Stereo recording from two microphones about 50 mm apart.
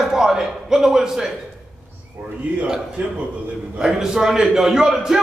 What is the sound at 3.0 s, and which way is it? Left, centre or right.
Speech, right.